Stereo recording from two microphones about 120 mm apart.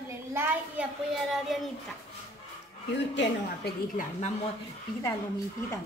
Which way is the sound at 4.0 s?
90° left.